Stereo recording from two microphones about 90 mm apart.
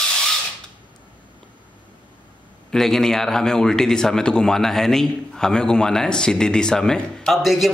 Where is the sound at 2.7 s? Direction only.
5° left (ahead or behind).